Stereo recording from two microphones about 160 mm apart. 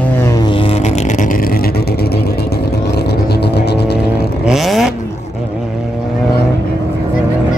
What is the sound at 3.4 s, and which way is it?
Music, 90° left.